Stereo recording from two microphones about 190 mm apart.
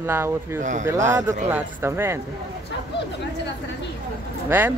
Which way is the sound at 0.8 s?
15° right (ahead or behind).